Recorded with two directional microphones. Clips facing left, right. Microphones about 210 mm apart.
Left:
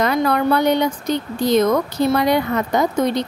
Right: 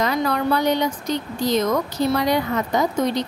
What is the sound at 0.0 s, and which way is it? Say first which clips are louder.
Speech: left 4 dB; 60° left (ahead or behind).